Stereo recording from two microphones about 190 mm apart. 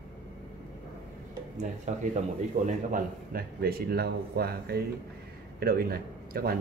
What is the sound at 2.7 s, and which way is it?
Speech, 50° right (ahead or behind).